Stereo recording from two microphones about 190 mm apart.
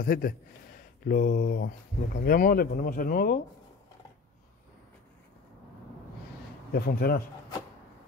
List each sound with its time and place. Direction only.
0.0 s speech: 50° left (ahead or behind)
6.7 s speech: 55° left (ahead or behind)